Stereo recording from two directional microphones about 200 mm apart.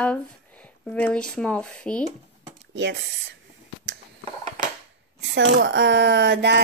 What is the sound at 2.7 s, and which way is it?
Speech, 60° right (ahead or behind).